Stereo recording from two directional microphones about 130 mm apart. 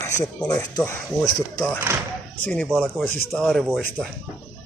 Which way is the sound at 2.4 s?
10° left (ahead or behind).